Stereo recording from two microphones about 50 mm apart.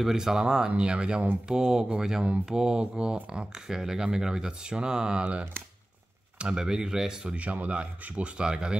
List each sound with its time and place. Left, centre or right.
0.0 s speech: centre
7.3 s speech: right